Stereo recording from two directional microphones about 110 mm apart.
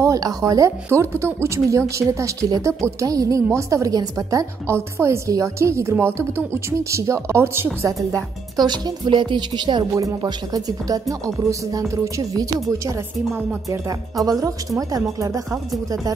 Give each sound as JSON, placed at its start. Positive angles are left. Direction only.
{"t": 0.0, "sound": "a woman's voice", "side_deg": -35}